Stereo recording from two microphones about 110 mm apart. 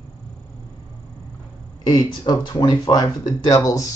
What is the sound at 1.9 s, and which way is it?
A man's voice, 45° left (ahead or behind).